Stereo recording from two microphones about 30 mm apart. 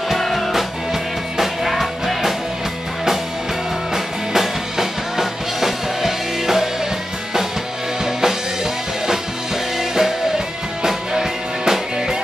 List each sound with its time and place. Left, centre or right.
0.2 s music: centre
0.5 s music: centre
3.9 s music: centre
8.0 s music: centre
9.8 s music: centre